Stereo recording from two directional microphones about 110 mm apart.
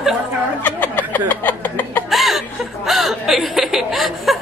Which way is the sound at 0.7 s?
15° left (ahead or behind).